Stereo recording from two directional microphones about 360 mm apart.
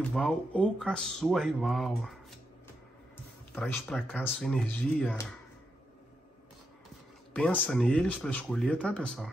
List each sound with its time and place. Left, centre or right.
0.1 s speech: centre
3.5 s speech: centre
7.3 s speech: centre